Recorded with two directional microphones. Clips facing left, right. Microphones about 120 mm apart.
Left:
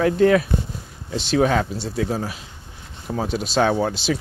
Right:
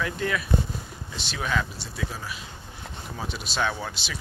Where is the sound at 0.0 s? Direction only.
50° left (ahead or behind).